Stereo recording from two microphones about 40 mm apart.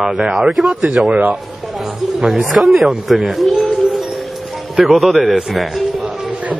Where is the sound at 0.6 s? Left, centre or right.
Right.